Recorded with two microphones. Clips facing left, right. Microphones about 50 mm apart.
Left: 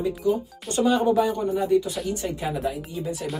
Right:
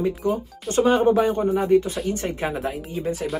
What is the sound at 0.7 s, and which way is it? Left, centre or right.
Speech, right.